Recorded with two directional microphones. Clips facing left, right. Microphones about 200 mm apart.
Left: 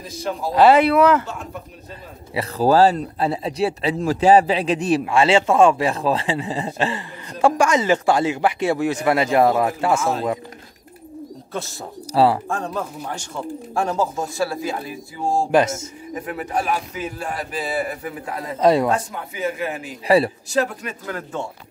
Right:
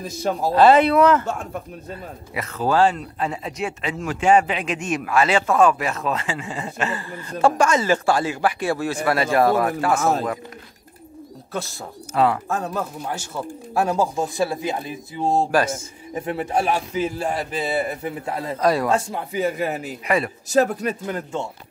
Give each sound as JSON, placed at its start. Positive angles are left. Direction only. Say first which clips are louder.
{"t": 0.0, "sound": "speech", "louder": "right 3 dB", "side_deg": -45}
{"t": 0.6, "sound": "speech", "louder": "left 1 dB", "side_deg": 10}
{"t": 1.2, "sound": "speech", "louder": "right 4 dB", "side_deg": -50}
{"t": 2.3, "sound": "speech", "louder": "left 4 dB", "side_deg": 35}
{"t": 7.4, "sound": "speech", "louder": "left 1 dB", "side_deg": 15}
{"t": 12.1, "sound": "speech", "louder": "left 3 dB", "side_deg": 30}
{"t": 12.4, "sound": "speech", "louder": "even", "side_deg": -5}
{"t": 15.5, "sound": "speech", "louder": "left 3 dB", "side_deg": 25}
{"t": 16.2, "sound": "a man's voice", "louder": "right 3 dB", "side_deg": -30}
{"t": 18.6, "sound": "speech", "louder": "left 4 dB", "side_deg": 25}
{"t": 18.9, "sound": "speech", "louder": "right 1 dB", "side_deg": -30}
{"t": 20.1, "sound": "speech", "louder": "left 6 dB", "side_deg": 35}
{"t": 20.5, "sound": "speech", "louder": "right 4 dB", "side_deg": -45}
{"t": 21.0, "sound": "speech", "louder": "right 2 dB", "side_deg": -15}